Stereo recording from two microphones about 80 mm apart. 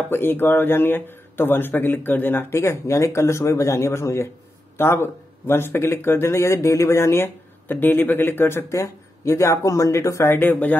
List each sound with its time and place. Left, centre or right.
0.1 s speech: left